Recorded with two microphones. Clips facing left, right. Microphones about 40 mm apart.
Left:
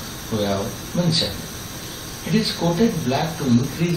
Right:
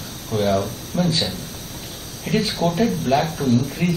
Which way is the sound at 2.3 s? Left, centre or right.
Centre.